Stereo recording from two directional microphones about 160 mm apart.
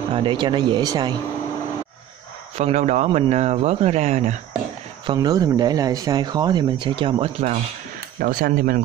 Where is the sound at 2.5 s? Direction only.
40° right (ahead or behind).